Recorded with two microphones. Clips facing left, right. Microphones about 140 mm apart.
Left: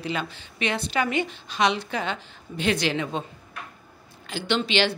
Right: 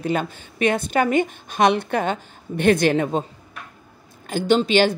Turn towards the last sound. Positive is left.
turn(degrees=-45)  # may be behind; listen again after turning